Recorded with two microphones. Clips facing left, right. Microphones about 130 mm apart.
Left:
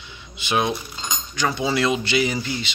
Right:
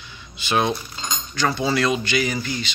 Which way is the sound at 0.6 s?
10° left (ahead or behind).